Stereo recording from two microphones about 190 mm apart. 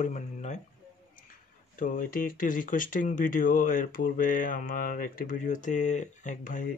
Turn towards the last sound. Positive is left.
turn(degrees=45)  # may be behind; listen again after turning